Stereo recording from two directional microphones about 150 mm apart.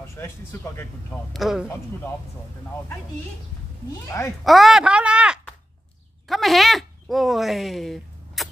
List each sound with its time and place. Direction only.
0.0 s speech: 15° left (ahead or behind)
1.3 s a man's voice: centre (ahead or behind)
4.5 s speech: centre (ahead or behind)
6.2 s a sound: centre (ahead or behind)